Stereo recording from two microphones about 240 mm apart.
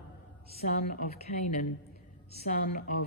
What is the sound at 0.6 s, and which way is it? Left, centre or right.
A woman's voice, left.